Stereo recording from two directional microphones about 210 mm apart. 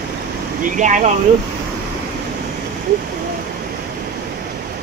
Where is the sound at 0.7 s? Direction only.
35° right (ahead or behind).